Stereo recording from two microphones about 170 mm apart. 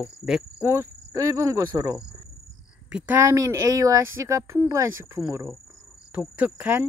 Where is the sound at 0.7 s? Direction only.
15° right (ahead or behind).